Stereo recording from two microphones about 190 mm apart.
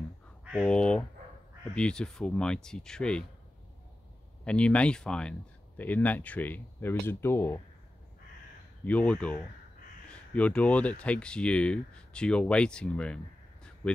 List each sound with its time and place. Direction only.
0.5 s speech: centre (ahead or behind)
4.5 s speech: 5° left (ahead or behind)
8.8 s speech: 5° left (ahead or behind)